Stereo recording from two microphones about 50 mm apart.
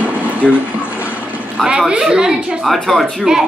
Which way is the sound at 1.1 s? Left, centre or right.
Right.